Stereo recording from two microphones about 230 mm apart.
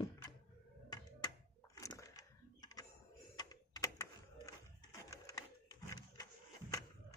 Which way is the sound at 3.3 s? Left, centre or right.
Centre.